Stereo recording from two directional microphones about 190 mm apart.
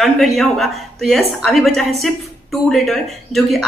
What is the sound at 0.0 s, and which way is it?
A woman's voice, centre (ahead or behind).